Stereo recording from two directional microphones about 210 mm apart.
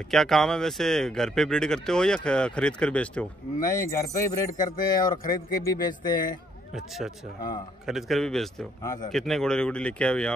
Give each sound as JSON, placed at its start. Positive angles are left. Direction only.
{"t": 0.1, "sound": "speech", "side_deg": 0}
{"t": 4.5, "sound": "speech", "side_deg": 40}
{"t": 5.3, "sound": "speech", "side_deg": 20}
{"t": 7.8, "sound": "speech", "side_deg": 0}